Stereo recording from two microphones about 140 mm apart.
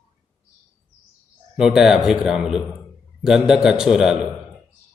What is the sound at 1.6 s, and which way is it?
Speech, 5° right (ahead or behind).